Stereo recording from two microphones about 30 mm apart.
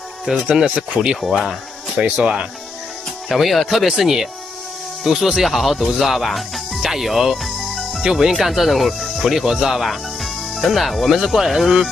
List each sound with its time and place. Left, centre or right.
0.5 s speech: centre
1.2 s speech: centre
2.0 s speech: right
3.3 s speech: centre
6.8 s music: centre
8.0 s speech: centre
8.4 s speech: centre
11.1 s speech: centre